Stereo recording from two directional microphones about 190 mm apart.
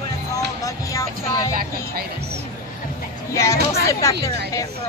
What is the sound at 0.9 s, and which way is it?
Vehicle, 20° left (ahead or behind).